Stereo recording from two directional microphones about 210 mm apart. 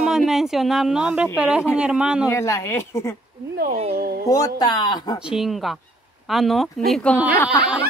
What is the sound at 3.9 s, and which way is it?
Speech, 45° right (ahead or behind).